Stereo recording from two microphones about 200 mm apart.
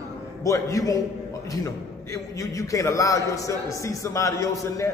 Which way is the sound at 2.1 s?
15° left (ahead or behind).